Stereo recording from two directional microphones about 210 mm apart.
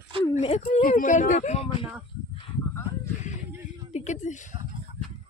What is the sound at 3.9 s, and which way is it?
Speech, 35° left (ahead or behind).